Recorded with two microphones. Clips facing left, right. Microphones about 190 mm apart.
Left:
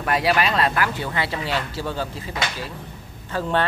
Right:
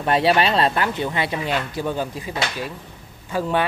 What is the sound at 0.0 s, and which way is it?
Speech, 25° right (ahead or behind).